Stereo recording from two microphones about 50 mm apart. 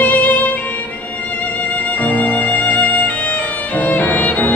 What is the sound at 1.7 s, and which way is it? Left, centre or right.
Music, left.